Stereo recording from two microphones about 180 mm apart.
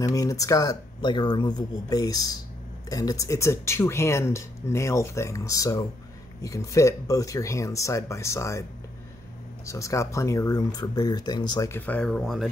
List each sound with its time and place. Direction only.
0.0 s speech: 20° left (ahead or behind)
9.7 s speech: 15° left (ahead or behind)
11.7 s speech: 10° left (ahead or behind)